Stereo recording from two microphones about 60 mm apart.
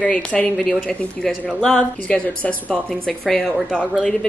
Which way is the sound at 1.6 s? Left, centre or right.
Centre.